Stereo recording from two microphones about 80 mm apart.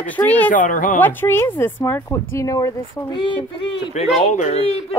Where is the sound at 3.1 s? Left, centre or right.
Left.